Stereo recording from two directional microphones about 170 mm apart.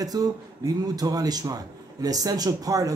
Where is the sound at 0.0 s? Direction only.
20° right (ahead or behind).